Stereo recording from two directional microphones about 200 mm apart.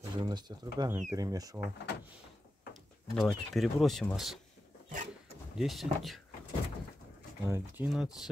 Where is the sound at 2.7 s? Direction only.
Centre (ahead or behind).